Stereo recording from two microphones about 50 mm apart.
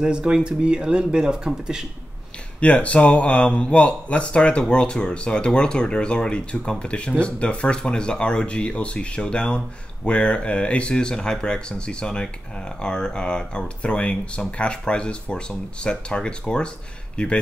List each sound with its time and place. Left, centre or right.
0.0 s speech: centre
2.6 s speech: left